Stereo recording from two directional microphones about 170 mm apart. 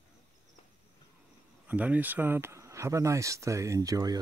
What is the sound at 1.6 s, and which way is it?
Speech, 10° right (ahead or behind).